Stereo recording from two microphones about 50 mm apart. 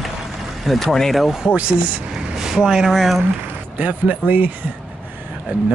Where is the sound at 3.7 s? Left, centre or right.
Right.